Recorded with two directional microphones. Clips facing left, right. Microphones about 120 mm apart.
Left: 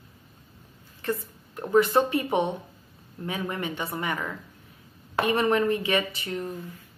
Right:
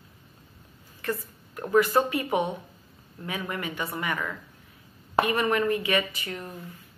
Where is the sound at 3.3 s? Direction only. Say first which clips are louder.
Left 2 dB; 30° left (ahead or behind).